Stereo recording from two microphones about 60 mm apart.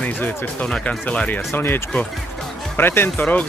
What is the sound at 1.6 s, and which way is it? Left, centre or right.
Speech, left.